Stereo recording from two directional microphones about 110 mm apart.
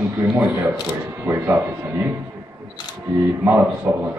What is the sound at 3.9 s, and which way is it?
Speech, 15° right (ahead or behind).